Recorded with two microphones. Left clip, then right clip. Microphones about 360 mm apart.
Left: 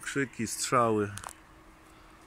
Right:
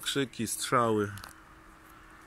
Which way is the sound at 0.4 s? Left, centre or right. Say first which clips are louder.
Left 2 dB; centre.